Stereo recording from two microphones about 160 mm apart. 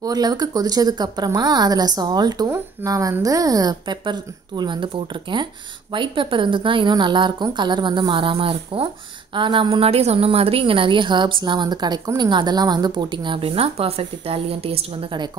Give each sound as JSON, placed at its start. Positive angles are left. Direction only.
{"t": 0.0, "sound": "a woman's voice", "side_deg": -25}